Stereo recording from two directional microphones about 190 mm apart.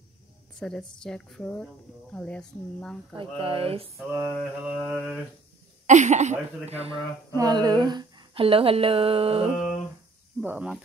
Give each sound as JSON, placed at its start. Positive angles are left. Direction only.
{"t": 0.6, "sound": "mantra", "side_deg": 5}
{"t": 3.2, "sound": "speech", "side_deg": -30}
{"t": 3.9, "sound": "mantra", "side_deg": -5}
{"t": 5.9, "sound": "speech", "side_deg": -40}
{"t": 7.3, "sound": "speech", "side_deg": -20}
{"t": 10.4, "sound": "speech", "side_deg": -10}